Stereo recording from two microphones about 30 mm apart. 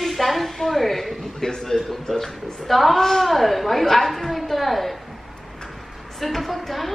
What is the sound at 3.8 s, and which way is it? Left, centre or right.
Speech, centre.